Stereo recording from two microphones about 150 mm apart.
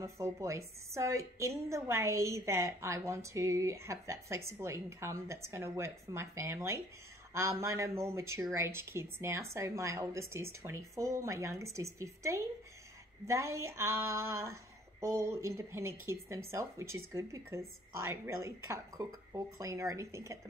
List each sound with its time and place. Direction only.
0.0 s speech: 20° right (ahead or behind)